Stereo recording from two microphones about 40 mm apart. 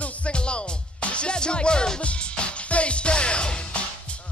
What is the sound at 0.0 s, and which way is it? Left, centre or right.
Music, left.